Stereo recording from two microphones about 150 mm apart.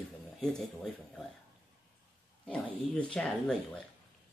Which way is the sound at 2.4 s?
5° left (ahead or behind).